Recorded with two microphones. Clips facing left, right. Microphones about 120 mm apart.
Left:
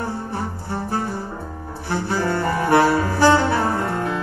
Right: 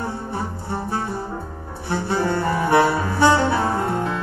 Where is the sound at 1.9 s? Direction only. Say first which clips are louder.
Even; 25° right (ahead or behind).